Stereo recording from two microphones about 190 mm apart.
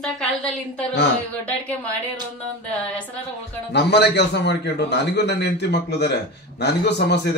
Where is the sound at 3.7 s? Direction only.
65° left (ahead or behind).